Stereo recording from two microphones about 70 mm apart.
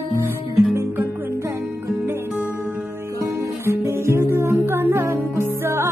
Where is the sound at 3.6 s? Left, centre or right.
Right.